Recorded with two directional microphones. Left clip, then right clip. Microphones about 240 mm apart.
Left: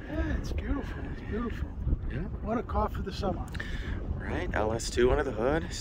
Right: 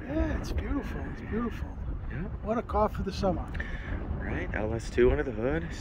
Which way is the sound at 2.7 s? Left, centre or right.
Right.